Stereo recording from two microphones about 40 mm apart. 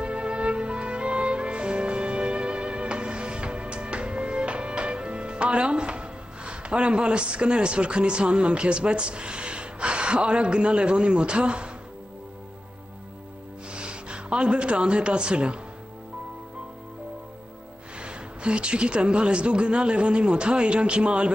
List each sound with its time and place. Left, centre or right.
0.0 s music: right
13.7 s speech: right
17.9 s speech: right